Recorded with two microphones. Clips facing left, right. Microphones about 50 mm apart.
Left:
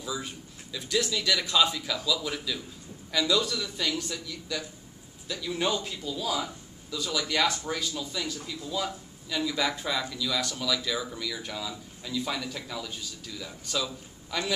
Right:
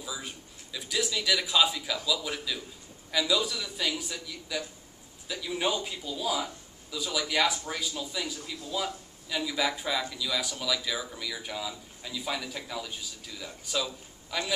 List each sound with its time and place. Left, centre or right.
0.0 s a man's voice: centre